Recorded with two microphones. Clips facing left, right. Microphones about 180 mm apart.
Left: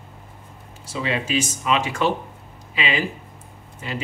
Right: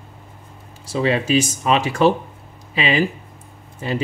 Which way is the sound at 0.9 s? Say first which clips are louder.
Right 6 dB; 35° right (ahead or behind).